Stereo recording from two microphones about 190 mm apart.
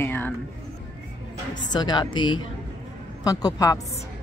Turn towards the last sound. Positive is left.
turn(degrees=20)  # may be behind; listen again after turning